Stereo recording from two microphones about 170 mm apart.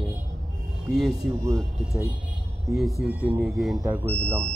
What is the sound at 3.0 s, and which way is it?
Speech, 10° right (ahead or behind).